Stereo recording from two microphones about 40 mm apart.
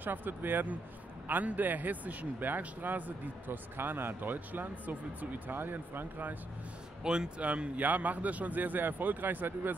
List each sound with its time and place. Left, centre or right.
0.0 s a man's voice: right
5.6 s speech: right
7.0 s speech: right
7.4 s speech: right
7.8 s a man's voice: right